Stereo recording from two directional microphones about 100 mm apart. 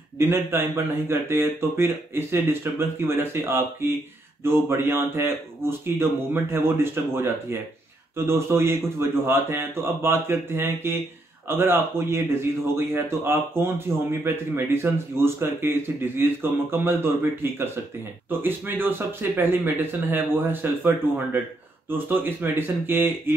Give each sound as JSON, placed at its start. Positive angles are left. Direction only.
{"t": 0.2, "sound": "speech", "side_deg": -25}